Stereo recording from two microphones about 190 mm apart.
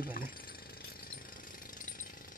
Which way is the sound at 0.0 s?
50° left (ahead or behind).